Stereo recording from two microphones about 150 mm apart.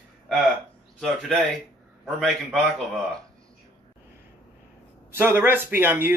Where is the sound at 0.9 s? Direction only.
Centre (ahead or behind).